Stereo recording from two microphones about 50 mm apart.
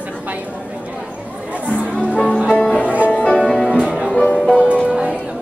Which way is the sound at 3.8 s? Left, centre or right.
Centre.